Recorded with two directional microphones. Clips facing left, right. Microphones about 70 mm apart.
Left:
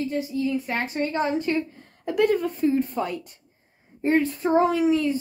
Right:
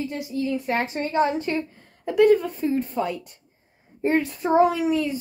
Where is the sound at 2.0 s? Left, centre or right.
Centre.